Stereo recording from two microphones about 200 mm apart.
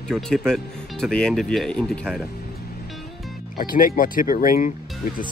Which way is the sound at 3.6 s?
45° left (ahead or behind).